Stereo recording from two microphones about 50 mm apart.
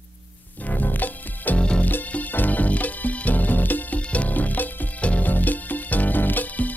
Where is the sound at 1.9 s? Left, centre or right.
Left.